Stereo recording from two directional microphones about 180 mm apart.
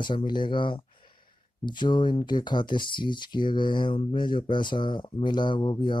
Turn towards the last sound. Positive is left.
turn(degrees=25)  # may be behind; listen again after turning